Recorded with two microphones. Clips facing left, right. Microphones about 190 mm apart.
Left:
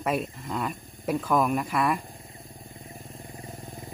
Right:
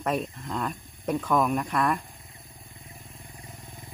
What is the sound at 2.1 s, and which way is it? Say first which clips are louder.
Vehicle: left 6 dB; 35° left (ahead or behind).